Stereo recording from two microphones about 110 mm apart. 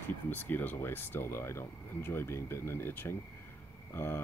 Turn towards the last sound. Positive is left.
turn(degrees=20)  # may be behind; listen again after turning